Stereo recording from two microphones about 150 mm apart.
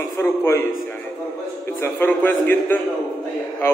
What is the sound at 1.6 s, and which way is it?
A man's voice, 15° left (ahead or behind).